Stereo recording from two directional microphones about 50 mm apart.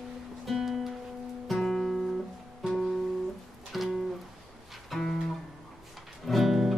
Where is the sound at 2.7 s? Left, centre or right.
Centre.